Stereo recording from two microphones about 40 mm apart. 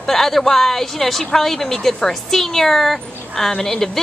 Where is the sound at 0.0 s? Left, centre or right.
Centre.